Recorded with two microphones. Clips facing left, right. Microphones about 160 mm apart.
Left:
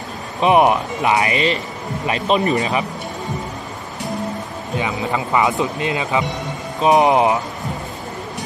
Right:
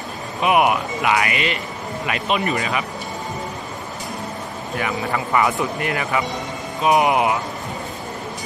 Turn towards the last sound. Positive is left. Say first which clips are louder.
# left 3 dB
turn(degrees=30)  # may be behind; listen again after turning